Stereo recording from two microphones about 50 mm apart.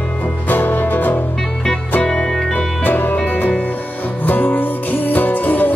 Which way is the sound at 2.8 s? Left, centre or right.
Left.